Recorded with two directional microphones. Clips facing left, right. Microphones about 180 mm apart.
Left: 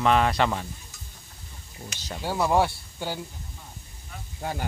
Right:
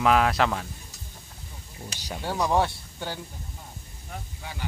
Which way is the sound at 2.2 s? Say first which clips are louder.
Left 1 dB; 5° left (ahead or behind).